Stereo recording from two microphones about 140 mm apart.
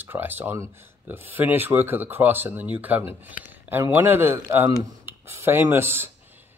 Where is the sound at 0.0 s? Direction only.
15° right (ahead or behind).